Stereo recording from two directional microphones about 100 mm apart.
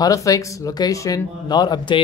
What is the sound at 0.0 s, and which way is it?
Speech, 35° left (ahead or behind).